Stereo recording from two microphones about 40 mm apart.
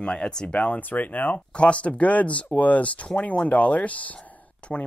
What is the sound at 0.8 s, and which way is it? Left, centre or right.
Speech, left.